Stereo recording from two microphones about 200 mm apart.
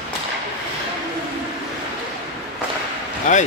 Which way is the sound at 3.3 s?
35° left (ahead or behind).